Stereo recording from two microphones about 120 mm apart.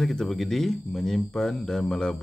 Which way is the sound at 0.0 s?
5° left (ahead or behind).